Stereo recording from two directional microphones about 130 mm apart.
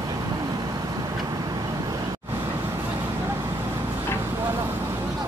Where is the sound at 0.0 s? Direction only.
25° right (ahead or behind).